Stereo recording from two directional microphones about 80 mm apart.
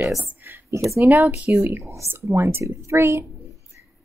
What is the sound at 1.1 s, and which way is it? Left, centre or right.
Speech, right.